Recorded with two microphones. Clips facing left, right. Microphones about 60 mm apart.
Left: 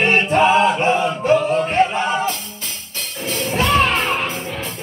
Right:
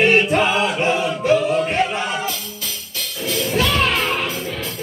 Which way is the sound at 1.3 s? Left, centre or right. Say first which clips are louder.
Even; left.